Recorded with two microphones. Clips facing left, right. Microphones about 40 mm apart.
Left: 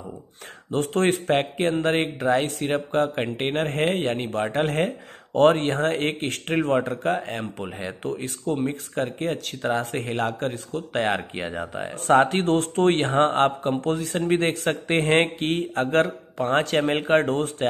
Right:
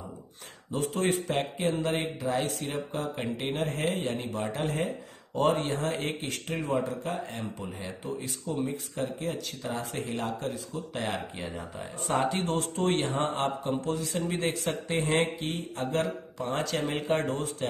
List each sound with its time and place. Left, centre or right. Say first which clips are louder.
0.7 s speech: left 6 dB; left